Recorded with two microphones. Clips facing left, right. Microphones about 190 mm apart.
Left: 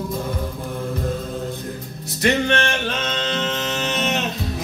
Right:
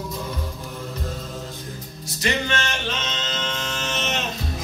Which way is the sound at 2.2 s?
60° left (ahead or behind).